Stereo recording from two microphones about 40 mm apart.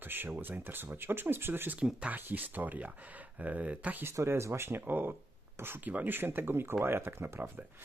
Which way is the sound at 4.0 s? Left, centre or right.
Right.